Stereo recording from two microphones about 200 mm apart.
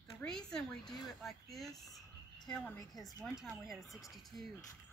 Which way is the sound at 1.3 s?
Centre (ahead or behind).